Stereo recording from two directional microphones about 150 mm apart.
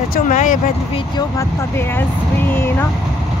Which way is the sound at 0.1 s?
60° left (ahead or behind).